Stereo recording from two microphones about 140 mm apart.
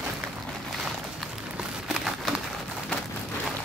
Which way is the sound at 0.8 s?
5° right (ahead or behind).